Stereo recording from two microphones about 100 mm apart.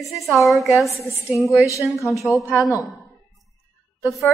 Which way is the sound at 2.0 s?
30° left (ahead or behind).